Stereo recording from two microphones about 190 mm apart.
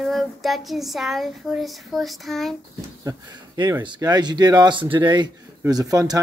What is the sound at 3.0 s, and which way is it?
Speech, 20° right (ahead or behind).